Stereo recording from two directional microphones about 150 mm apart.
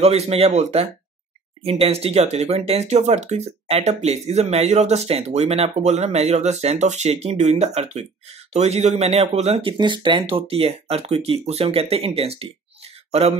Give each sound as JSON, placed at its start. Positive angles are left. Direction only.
{"t": 0.0, "sound": "speech", "side_deg": -45}